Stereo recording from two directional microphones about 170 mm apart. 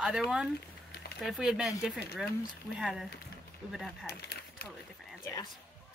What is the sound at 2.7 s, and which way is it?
Speech, centre (ahead or behind).